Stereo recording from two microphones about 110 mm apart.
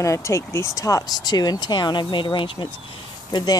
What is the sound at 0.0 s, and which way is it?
Speech, 30° left (ahead or behind).